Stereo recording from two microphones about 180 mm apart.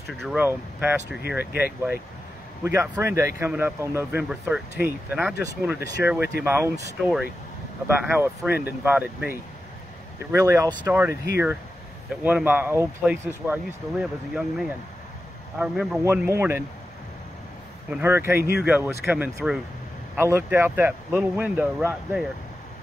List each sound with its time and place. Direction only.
0.2 s a man's voice: centre (ahead or behind)
12.2 s a man's voice: 10° right (ahead or behind)
16.0 s speech: 15° right (ahead or behind)
17.9 s speech: 10° right (ahead or behind)